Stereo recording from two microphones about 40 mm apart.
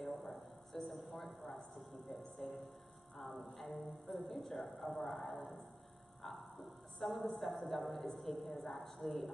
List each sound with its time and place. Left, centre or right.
0.0 s a sound: centre
2.0 s a woman's voice: centre
7.0 s a woman's voice: centre